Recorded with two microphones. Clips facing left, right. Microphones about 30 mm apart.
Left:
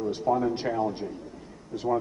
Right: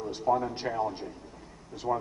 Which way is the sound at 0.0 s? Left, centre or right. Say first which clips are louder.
Left 2 dB; centre.